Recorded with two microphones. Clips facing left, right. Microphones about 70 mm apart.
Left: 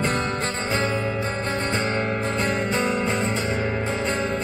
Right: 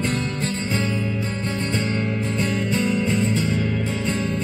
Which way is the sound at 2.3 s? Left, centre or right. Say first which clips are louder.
Right 1 dB; left.